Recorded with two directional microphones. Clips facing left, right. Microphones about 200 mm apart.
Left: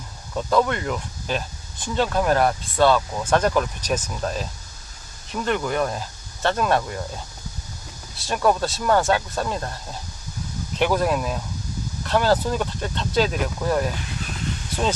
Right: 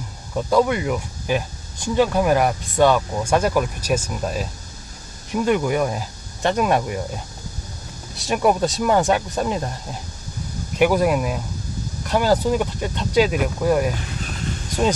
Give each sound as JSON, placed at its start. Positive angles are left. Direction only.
{"t": 0.3, "sound": "speech", "side_deg": -15}
{"t": 8.2, "sound": "speech", "side_deg": -15}
{"t": 10.8, "sound": "speech", "side_deg": -10}